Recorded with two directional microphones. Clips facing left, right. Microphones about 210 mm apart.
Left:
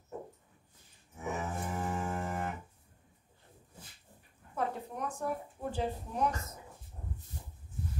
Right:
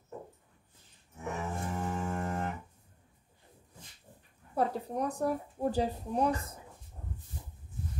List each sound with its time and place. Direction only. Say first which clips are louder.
1.1 s cattle: even; centre (ahead or behind)
4.6 s speech: right 5 dB; 35° right (ahead or behind)